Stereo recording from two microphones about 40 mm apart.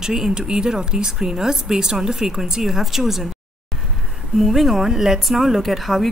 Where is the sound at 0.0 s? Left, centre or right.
Centre.